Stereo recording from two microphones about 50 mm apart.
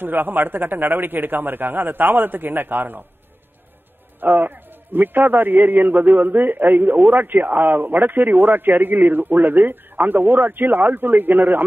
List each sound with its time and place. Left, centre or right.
0.0 s a man's voice: right
4.2 s a man's voice: right